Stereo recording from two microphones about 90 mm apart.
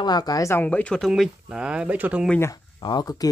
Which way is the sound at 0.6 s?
15° left (ahead or behind).